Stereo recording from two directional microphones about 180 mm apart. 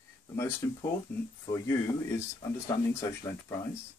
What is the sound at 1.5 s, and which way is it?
Speech, 15° left (ahead or behind).